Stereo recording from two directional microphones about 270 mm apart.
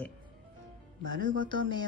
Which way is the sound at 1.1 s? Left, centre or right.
Right.